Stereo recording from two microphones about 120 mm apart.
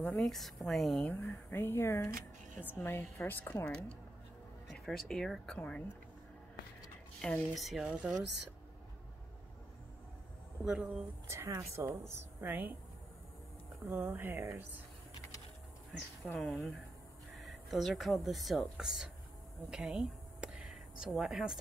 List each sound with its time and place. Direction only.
0.0 s a woman's voice: 5° left (ahead or behind)
1.1 s a woman's voice: 20° left (ahead or behind)
7.2 s a woman's voice: 5° left (ahead or behind)
10.6 s a woman's voice: 5° right (ahead or behind)
11.2 s a woman's voice: 25° right (ahead or behind)
13.8 s a woman's voice: 20° right (ahead or behind)
16.3 s a woman's voice: centre (ahead or behind)
19.7 s a sound: 5° right (ahead or behind)